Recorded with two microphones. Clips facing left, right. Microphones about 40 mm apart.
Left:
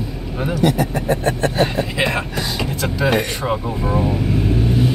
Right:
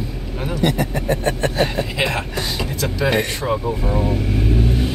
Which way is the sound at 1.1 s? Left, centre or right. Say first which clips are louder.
Left 1 dB; left.